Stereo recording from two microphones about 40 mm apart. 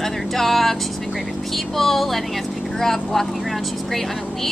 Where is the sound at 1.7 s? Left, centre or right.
Centre.